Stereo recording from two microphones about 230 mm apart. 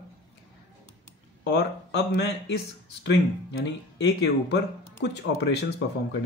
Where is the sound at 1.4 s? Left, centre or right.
Left.